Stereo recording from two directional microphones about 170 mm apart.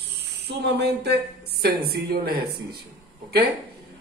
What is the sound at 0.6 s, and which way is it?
Speech, 75° right (ahead or behind).